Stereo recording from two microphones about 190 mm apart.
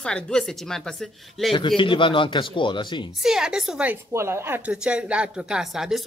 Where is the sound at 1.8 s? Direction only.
25° left (ahead or behind).